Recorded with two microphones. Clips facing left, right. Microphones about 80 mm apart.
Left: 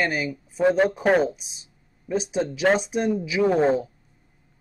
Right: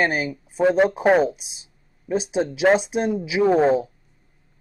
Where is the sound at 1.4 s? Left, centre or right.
Left.